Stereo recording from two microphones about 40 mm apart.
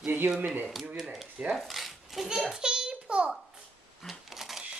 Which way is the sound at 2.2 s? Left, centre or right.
Centre.